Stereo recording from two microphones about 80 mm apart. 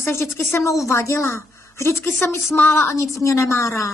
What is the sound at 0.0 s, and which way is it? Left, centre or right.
A woman's voice, left.